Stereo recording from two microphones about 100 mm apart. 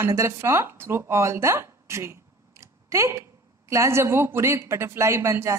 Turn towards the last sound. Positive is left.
turn(degrees=-25)  # may be behind; listen again after turning